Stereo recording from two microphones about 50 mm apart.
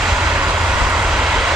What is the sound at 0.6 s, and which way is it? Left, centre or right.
Vehicle, right.